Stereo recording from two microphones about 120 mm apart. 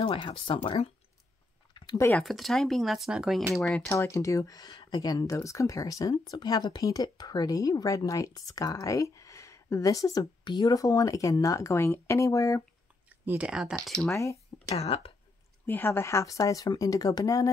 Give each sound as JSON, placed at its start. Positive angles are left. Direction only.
{"t": 0.0, "sound": "speech", "side_deg": 45}
{"t": 1.7, "sound": "a sound", "side_deg": 40}
{"t": 2.1, "sound": "speech", "side_deg": 0}
{"t": 3.8, "sound": "speech", "side_deg": 25}
{"t": 13.1, "sound": "speech", "side_deg": -15}
{"t": 14.1, "sound": "speech", "side_deg": 25}
{"t": 14.7, "sound": "speech", "side_deg": 55}
{"t": 15.6, "sound": "speech", "side_deg": 20}